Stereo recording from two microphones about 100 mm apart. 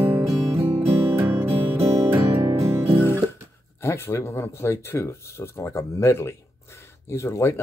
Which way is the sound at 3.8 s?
25° left (ahead or behind).